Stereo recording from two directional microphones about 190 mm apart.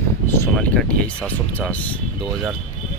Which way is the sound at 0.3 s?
10° left (ahead or behind).